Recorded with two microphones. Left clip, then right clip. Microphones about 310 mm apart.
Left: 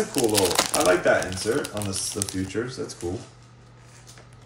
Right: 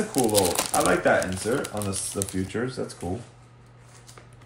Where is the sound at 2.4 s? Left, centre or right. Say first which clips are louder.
Even; right.